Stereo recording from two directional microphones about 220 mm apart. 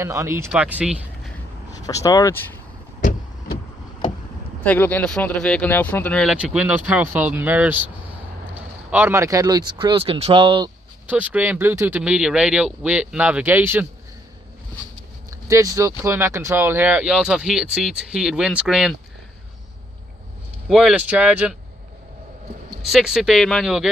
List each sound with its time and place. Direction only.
0.0 s speech: 15° right (ahead or behind)
1.7 s speech: 15° left (ahead or behind)
3.0 s vehicle: 35° left (ahead or behind)
4.6 s speech: 10° left (ahead or behind); by 10.7 s 20° right (ahead or behind)
11.1 s speech: 5° right (ahead or behind)
15.4 s speech: 15° right (ahead or behind)
20.6 s speech: 5° right (ahead or behind)
22.8 s speech: centre (ahead or behind)